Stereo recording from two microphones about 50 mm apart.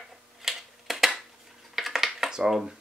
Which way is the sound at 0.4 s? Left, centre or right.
Centre.